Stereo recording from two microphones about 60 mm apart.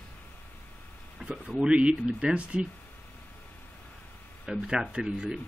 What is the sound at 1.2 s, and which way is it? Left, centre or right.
Speech, centre.